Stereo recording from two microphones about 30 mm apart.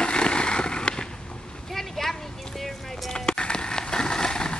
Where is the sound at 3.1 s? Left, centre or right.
Left.